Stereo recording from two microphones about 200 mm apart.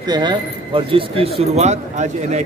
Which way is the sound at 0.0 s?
20° right (ahead or behind).